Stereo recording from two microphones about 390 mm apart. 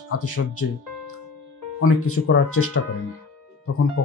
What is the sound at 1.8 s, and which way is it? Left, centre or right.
Speech, left.